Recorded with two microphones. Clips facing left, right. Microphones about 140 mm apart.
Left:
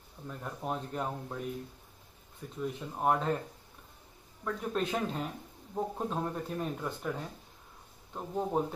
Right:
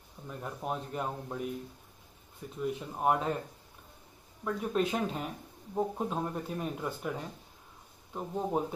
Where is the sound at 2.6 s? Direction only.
5° right (ahead or behind).